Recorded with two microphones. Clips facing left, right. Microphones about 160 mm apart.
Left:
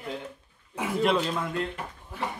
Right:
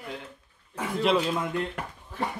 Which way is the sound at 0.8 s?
5° left (ahead or behind).